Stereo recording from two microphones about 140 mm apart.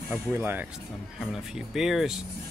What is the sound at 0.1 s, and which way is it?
Speech, 15° right (ahead or behind).